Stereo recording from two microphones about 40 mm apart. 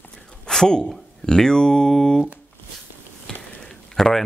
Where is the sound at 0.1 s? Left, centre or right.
Centre.